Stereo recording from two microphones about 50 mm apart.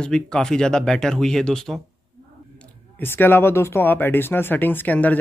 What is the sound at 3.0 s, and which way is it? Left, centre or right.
Speech, left.